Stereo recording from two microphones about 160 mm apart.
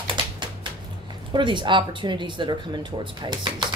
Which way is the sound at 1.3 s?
30° right (ahead or behind).